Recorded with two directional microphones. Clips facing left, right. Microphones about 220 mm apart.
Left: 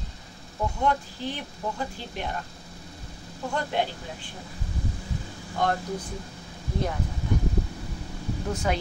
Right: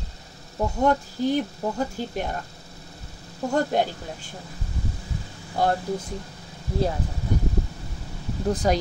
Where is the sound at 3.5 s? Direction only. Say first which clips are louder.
Right 5 dB; 45° right (ahead or behind).